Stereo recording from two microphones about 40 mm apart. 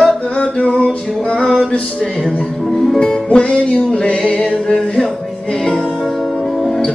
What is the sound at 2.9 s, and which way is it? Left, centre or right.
Music, centre.